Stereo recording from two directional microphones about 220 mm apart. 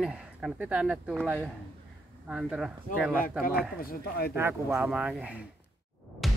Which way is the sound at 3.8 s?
45° left (ahead or behind).